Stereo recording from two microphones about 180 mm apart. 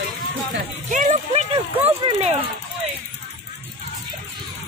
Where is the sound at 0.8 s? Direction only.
40° right (ahead or behind).